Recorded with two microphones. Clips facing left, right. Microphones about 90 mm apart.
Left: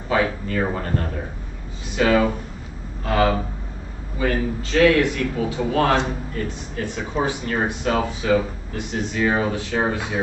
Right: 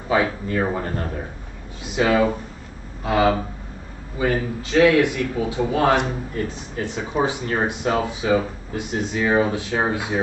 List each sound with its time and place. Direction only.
0.1 s a man's voice: 15° right (ahead or behind)
2.0 s a man's voice: 10° right (ahead or behind)